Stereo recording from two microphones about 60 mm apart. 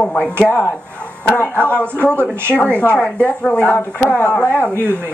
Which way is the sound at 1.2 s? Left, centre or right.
Left.